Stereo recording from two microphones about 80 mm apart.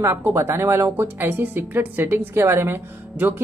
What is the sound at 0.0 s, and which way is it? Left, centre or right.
A woman's voice, right.